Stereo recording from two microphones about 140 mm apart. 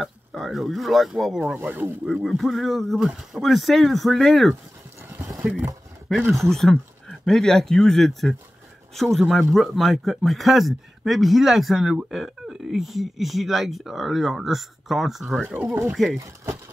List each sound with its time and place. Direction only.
0.0 s speech: centre (ahead or behind)
1.6 s speech: 15° right (ahead or behind)
2.2 s speech: centre (ahead or behind)
5.4 s speech: 15° right (ahead or behind)
6.5 s speech: 5° left (ahead or behind)
15.4 s speech: 15° right (ahead or behind)
15.9 s speech: 5° right (ahead or behind)